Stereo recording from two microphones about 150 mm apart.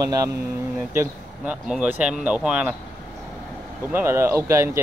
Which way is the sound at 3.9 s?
15° right (ahead or behind).